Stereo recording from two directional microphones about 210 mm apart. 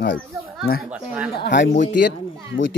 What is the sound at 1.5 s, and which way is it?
Speech, 60° left (ahead or behind).